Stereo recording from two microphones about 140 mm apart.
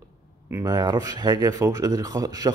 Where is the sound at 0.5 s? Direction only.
25° right (ahead or behind).